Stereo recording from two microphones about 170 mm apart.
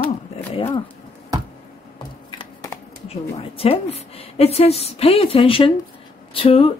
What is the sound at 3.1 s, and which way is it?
Speech, 35° left (ahead or behind).